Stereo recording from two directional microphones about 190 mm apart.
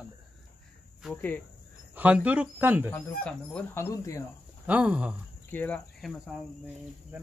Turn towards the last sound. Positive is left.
turn(degrees=0)  # may be behind; listen again after turning